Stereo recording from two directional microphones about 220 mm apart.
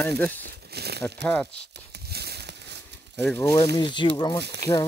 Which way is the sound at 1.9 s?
45° right (ahead or behind).